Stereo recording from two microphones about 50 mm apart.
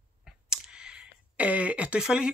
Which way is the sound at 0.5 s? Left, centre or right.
Centre.